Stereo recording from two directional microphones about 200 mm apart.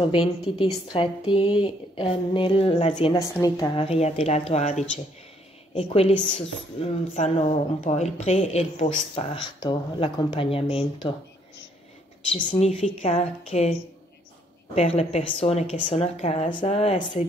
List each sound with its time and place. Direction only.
0.1 s speech: 25° left (ahead or behind)
3.8 s a woman's voice: 30° left (ahead or behind)
12.4 s a woman's voice: 35° left (ahead or behind)
14.8 s a woman's voice: 30° left (ahead or behind)